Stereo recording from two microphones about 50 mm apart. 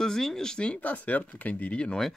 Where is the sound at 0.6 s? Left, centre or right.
Left.